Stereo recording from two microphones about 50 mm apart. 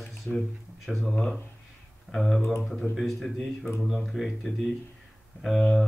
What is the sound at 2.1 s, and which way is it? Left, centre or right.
Speech, centre.